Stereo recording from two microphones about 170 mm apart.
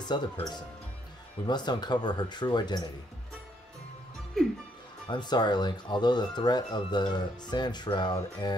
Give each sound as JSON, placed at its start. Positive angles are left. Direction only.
{"t": 0.0, "sound": "speech", "side_deg": 25}
{"t": 5.0, "sound": "speech", "side_deg": 25}